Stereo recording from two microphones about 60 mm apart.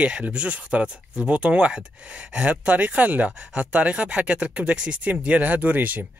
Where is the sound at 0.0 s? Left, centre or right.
Right.